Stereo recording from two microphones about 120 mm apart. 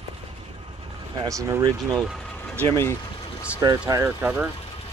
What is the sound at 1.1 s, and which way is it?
Speech, 30° right (ahead or behind).